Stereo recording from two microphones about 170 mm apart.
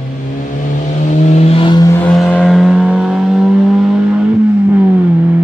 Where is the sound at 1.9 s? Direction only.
5° left (ahead or behind).